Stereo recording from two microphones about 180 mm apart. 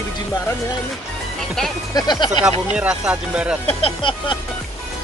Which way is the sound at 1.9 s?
20° left (ahead or behind).